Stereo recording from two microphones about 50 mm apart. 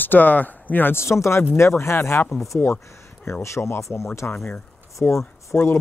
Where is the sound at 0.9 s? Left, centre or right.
Left.